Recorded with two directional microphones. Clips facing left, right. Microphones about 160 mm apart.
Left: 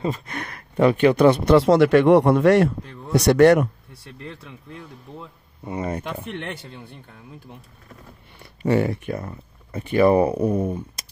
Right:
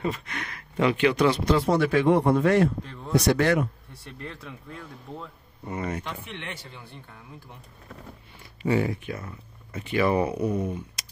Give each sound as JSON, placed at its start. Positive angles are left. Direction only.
{"t": 0.1, "sound": "speech", "side_deg": 40}
{"t": 5.8, "sound": "speech", "side_deg": 35}
{"t": 6.0, "sound": "speech", "side_deg": 60}
{"t": 8.4, "sound": "a sound", "side_deg": 60}
{"t": 9.0, "sound": "speech", "side_deg": 45}
{"t": 10.4, "sound": "speech", "side_deg": 50}